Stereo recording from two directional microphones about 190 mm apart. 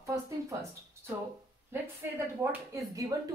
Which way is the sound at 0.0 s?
15° right (ahead or behind).